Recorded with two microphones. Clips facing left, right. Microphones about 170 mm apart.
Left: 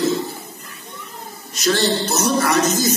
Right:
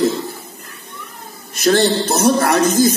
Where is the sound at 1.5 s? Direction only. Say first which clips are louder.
Right 5 dB; 55° right (ahead or behind).